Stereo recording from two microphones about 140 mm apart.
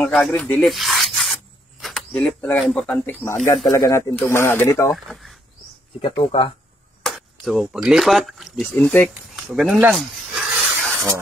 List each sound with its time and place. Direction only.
0.0 s speech: centre (ahead or behind)
2.9 s speech: 15° left (ahead or behind)
4.9 s speech: centre (ahead or behind)
6.1 s speech: 40° left (ahead or behind)
7.0 s speech: centre (ahead or behind)
9.3 s a sound: centre (ahead or behind)
9.9 s snake: centre (ahead or behind)